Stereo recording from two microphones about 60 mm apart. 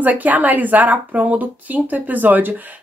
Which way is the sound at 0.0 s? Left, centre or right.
Right.